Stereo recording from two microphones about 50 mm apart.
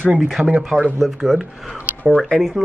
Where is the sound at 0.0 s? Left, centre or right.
Right.